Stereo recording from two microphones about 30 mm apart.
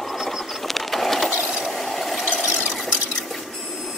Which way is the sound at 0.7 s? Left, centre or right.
Centre.